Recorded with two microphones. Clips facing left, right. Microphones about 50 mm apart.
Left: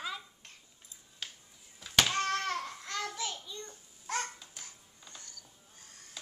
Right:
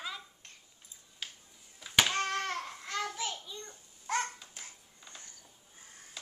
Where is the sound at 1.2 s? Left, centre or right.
Centre.